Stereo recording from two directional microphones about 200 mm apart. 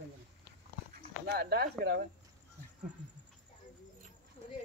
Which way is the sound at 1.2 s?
55° right (ahead or behind).